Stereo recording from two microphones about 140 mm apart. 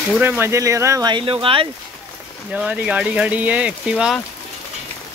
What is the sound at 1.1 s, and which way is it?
Speech, 40° right (ahead or behind).